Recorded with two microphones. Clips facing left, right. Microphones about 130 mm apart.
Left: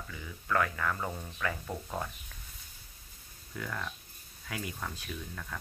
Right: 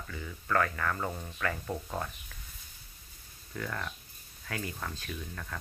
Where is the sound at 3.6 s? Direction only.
5° left (ahead or behind).